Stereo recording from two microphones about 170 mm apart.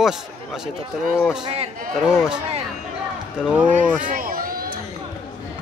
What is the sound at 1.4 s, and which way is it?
Speech, 35° right (ahead or behind).